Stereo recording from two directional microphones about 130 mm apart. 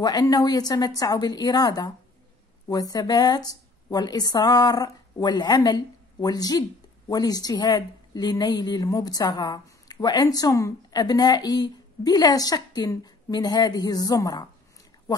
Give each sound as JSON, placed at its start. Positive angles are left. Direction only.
{"t": 0.0, "sound": "a woman's voice", "side_deg": 30}